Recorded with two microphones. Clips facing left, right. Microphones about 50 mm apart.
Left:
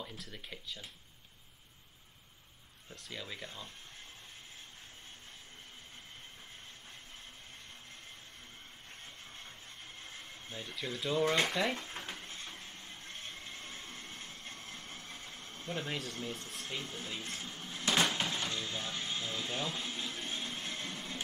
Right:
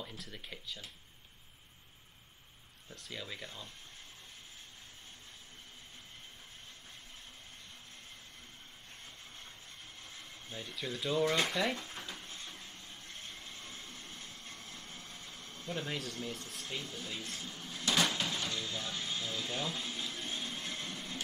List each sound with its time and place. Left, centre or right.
0.2 s speech: centre
2.9 s speech: centre
3.4 s speech: left
10.0 s a sound: left
10.7 s speech: centre
11.1 s a sound: left
16.3 s speech: centre
16.6 s speech: left
20.1 s a sound: left